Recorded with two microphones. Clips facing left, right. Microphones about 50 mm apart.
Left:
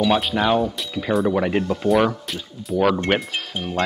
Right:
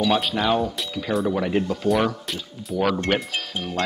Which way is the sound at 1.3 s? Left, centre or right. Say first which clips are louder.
Left 2 dB; left.